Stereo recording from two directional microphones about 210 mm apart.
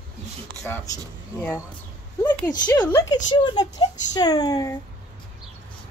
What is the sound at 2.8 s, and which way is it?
Speech, 15° left (ahead or behind).